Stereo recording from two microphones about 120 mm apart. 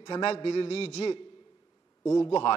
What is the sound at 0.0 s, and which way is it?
A man's voice, 55° left (ahead or behind).